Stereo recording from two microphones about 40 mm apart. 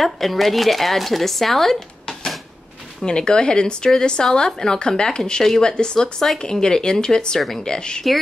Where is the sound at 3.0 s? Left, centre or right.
Left.